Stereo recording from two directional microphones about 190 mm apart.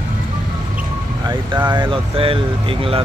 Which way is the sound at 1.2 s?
25° right (ahead or behind).